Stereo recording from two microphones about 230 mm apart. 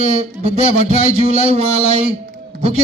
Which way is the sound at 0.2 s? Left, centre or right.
Right.